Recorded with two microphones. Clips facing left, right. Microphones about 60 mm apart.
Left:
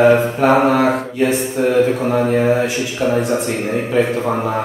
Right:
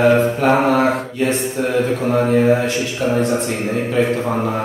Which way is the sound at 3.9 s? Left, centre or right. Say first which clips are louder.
Left 1 dB; centre.